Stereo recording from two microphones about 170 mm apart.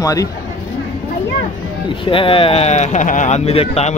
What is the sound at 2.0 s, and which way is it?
Speech, 30° left (ahead or behind).